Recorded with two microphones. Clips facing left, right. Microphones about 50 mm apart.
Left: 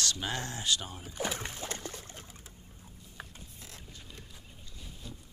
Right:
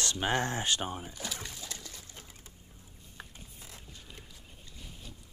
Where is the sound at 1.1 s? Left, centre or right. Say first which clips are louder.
Left 5 dB; left.